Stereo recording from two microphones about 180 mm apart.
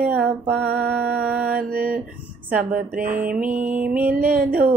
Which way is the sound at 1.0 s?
60° right (ahead or behind).